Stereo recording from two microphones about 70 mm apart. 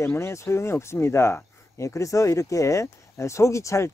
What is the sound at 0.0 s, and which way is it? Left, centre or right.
Speech, left.